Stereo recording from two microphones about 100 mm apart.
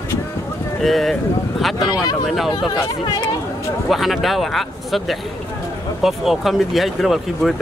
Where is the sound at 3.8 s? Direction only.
Centre (ahead or behind).